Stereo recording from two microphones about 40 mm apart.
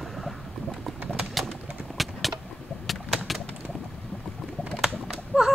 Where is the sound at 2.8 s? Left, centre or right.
Centre.